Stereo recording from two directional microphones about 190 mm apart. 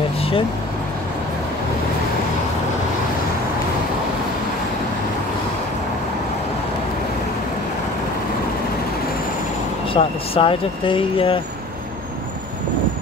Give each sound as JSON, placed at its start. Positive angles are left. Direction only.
{"t": 9.9, "sound": "speech", "side_deg": 30}